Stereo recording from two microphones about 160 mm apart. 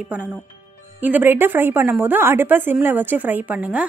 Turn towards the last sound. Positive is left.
turn(degrees=-10)  # may be behind; listen again after turning